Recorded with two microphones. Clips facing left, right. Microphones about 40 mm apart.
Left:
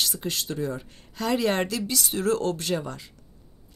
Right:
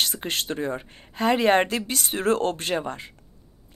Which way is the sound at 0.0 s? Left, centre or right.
Right.